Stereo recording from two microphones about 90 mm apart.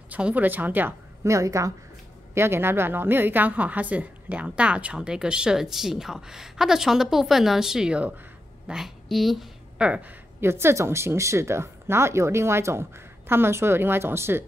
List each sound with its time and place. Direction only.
0.1 s speech: 15° right (ahead or behind)
1.2 s a woman's voice: 35° right (ahead or behind); by 10.1 s 10° right (ahead or behind)
10.4 s speech: 30° right (ahead or behind)